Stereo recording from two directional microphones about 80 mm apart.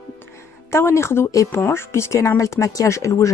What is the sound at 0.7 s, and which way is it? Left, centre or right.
Speech, left.